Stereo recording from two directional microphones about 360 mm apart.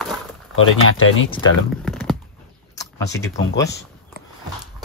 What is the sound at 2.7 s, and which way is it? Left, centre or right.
Speech, centre.